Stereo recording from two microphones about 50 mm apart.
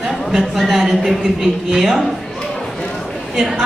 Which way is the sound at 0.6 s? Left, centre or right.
Centre.